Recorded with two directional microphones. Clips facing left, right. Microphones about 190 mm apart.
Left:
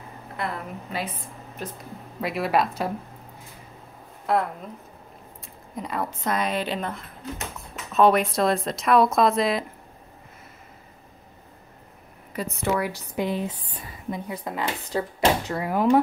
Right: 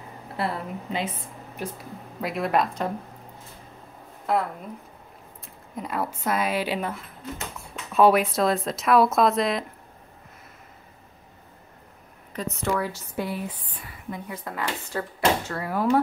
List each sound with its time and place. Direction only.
0.4 s a woman's voice: 30° right (ahead or behind)
1.6 s speech: 10° right (ahead or behind)
2.1 s a woman's voice: centre (ahead or behind)
4.3 s a woman's voice: centre (ahead or behind)
5.8 s a woman's voice: 5° right (ahead or behind)
12.3 s speech: 10° left (ahead or behind)